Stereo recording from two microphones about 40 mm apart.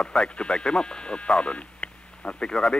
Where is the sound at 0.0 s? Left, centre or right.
Left.